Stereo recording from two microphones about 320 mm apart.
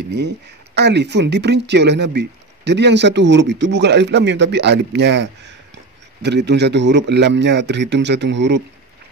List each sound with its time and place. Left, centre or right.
0.7 s speech: right